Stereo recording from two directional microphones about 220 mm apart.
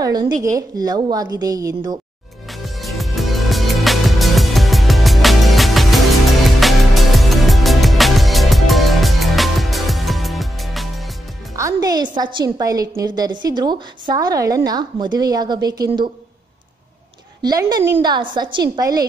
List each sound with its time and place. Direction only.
0.0 s a woman's voice: 15° right (ahead or behind)
2.6 s music: centre (ahead or behind)
11.5 s a woman's voice: 15° right (ahead or behind)
17.4 s a woman's voice: 20° right (ahead or behind)